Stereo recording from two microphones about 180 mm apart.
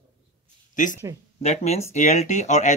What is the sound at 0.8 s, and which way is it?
Speech, 45° left (ahead or behind).